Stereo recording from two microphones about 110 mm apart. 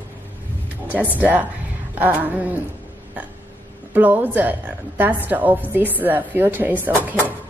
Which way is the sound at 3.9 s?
15° right (ahead or behind).